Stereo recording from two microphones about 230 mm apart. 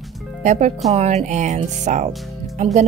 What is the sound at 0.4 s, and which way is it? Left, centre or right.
Speech, right.